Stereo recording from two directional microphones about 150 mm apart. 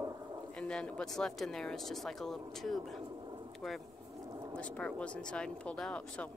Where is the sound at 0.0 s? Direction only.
25° right (ahead or behind).